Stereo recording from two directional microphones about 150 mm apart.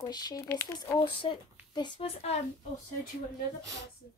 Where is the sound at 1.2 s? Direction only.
30° left (ahead or behind).